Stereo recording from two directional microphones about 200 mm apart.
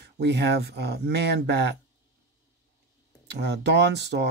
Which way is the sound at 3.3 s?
55° right (ahead or behind).